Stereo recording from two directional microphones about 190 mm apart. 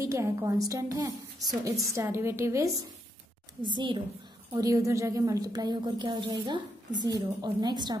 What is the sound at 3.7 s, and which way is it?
A woman's voice, 25° right (ahead or behind).